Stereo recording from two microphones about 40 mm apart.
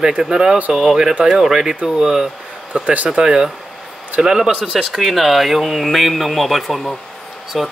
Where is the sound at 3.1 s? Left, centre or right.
Centre.